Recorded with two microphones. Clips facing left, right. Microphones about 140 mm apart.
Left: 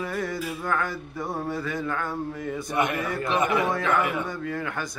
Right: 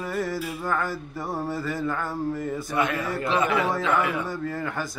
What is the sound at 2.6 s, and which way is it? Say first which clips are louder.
A man's voice: left 1 dB; 20° left (ahead or behind).